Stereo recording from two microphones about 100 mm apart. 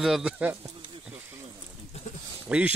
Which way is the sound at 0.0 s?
Centre (ahead or behind).